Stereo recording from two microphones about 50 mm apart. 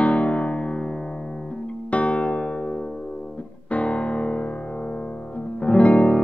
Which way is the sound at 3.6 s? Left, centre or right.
Left.